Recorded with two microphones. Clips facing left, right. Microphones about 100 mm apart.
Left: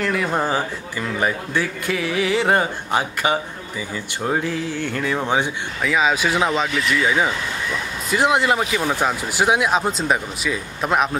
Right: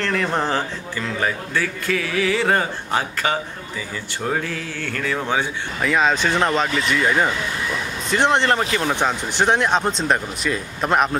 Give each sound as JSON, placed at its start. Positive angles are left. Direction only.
{"t": 0.0, "sound": "a man's voice", "side_deg": 10}
{"t": 5.8, "sound": "speech", "side_deg": 0}